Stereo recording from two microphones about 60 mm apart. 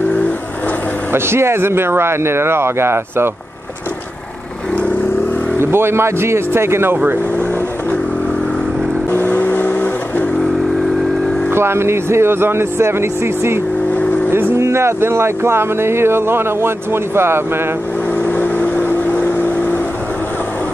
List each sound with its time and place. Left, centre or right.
1.1 s speech: right
5.6 s speech: right
9.1 s vehicle: left
11.5 s speech: right
18.2 s vehicle: left